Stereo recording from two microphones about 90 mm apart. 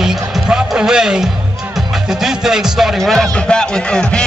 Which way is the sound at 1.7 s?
5° right (ahead or behind).